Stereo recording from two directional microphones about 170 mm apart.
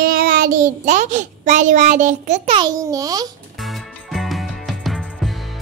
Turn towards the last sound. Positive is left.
turn(degrees=0)  # may be behind; listen again after turning